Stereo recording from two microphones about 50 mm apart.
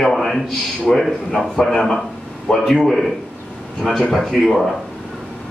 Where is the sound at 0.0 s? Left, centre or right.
Centre.